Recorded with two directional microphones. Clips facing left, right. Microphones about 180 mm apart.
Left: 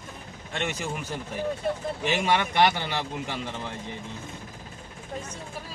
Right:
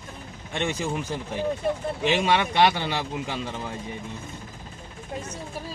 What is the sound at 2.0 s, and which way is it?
A man's voice, 20° right (ahead or behind).